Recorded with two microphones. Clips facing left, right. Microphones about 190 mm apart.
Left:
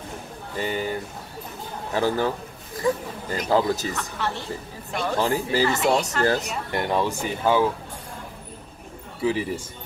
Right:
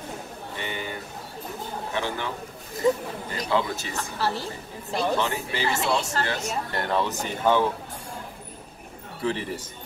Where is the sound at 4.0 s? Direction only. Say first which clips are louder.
Right 1 dB; 35° right (ahead or behind).